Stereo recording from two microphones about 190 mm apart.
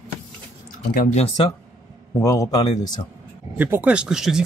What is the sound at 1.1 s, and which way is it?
Speech, 30° left (ahead or behind).